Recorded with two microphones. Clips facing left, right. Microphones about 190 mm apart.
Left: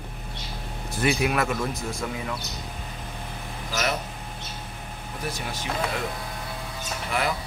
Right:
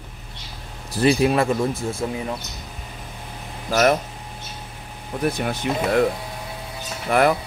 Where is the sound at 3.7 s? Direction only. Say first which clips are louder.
Right 10 dB; 50° right (ahead or behind).